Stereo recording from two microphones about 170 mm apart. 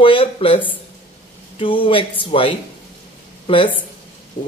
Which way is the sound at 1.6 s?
30° left (ahead or behind).